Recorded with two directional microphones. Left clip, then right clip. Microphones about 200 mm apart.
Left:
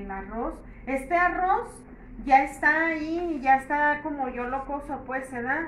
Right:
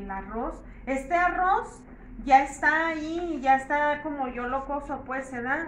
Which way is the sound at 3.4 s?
Centre (ahead or behind).